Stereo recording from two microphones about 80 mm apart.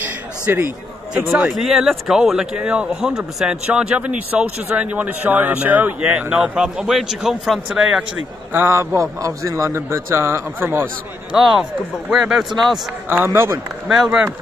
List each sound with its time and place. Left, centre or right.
0.0 s a sound: right
1.1 s speech: centre
8.5 s a man's voice: right
12.1 s speech: centre
13.1 s a man's voice: right
13.8 s speech: centre